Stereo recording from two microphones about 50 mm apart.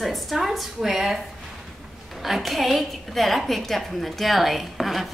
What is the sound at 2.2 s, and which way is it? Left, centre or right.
A woman's voice, centre.